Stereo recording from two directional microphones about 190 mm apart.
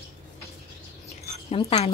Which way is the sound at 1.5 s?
35° left (ahead or behind).